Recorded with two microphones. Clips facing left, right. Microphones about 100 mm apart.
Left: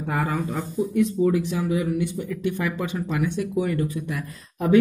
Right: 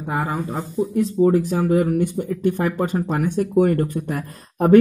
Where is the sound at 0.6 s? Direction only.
35° right (ahead or behind).